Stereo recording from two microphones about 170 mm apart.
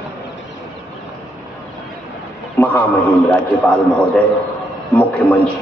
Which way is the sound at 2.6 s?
15° left (ahead or behind).